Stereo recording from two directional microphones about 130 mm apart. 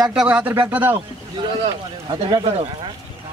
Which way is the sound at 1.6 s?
35° right (ahead or behind).